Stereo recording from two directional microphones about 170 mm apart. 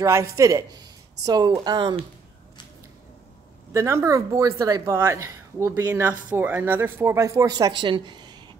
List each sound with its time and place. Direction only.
0.0 s speech: 20° right (ahead or behind)
3.7 s speech: 15° right (ahead or behind)